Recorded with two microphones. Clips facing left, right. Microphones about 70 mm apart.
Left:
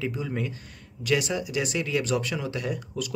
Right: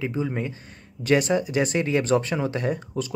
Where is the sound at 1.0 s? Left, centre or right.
Right.